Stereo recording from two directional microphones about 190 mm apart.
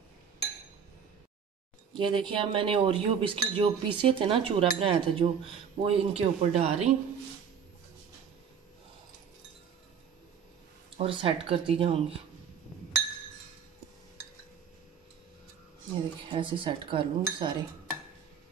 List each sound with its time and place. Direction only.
2.0 s speech: 25° right (ahead or behind)
11.0 s speech: 30° right (ahead or behind)
16.3 s speech: 25° right (ahead or behind)